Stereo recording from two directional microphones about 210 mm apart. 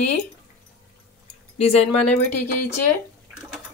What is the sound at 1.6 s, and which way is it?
Speech, 30° left (ahead or behind).